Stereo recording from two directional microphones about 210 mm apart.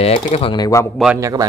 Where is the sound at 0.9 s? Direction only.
5° right (ahead or behind).